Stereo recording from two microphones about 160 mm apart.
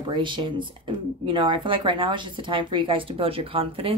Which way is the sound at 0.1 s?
30° right (ahead or behind).